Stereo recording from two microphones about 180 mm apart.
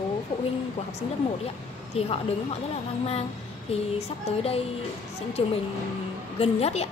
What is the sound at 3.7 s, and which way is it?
A woman's voice, 35° left (ahead or behind).